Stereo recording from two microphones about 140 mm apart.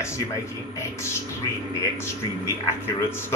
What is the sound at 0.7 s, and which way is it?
Speech, 20° left (ahead or behind).